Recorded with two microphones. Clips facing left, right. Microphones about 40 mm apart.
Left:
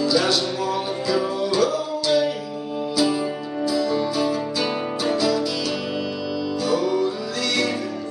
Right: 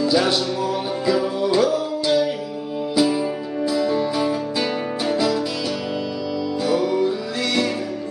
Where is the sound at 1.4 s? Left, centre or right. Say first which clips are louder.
Right 2 dB; right.